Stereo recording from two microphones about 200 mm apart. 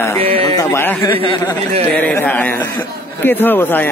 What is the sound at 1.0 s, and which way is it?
Speech, 25° left (ahead or behind).